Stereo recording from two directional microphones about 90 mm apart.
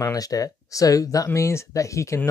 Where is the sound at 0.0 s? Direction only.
40° left (ahead or behind).